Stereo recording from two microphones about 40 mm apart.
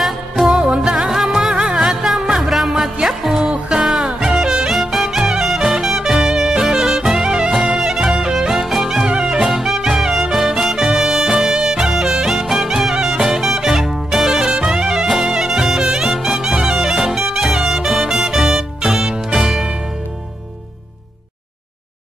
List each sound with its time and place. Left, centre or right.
0.0 s music: centre